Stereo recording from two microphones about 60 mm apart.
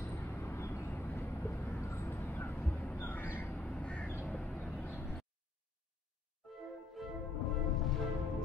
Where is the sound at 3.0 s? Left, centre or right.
Left.